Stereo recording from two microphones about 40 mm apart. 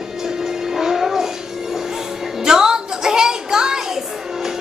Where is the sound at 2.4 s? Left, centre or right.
Centre.